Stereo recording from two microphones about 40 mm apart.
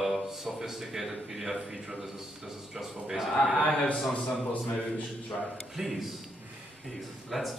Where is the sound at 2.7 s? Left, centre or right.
Centre.